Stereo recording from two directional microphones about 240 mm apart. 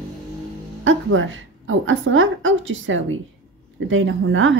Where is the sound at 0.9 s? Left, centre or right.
Right.